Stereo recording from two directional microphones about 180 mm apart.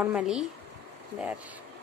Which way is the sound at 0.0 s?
5° right (ahead or behind).